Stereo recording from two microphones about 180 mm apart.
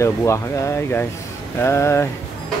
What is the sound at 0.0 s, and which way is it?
Speech, 15° left (ahead or behind).